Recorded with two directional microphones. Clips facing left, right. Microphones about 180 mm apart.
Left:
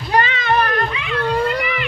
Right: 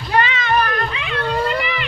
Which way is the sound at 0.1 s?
45° left (ahead or behind).